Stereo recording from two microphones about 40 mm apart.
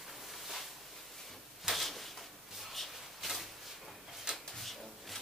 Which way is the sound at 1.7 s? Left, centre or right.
Centre.